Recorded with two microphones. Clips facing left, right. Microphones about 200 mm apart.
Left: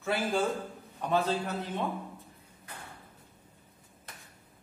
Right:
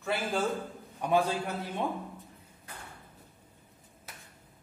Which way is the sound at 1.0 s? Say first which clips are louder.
Right 1 dB; 10° right (ahead or behind).